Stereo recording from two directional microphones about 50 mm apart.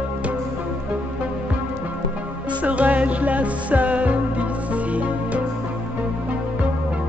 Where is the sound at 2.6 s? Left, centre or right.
Right.